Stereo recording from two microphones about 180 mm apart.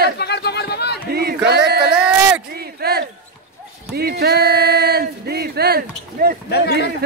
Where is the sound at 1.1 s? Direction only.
60° right (ahead or behind).